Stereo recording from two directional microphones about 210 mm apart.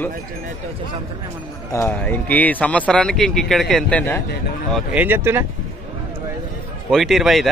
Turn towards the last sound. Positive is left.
turn(degrees=0)  # may be behind; listen again after turning